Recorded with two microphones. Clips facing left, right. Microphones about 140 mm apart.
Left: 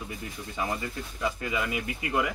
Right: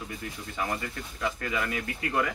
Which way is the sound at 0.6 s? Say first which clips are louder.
Left 1 dB; 15° left (ahead or behind).